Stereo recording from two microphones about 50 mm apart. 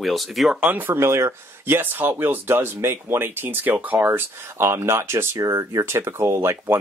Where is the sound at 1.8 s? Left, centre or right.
Right.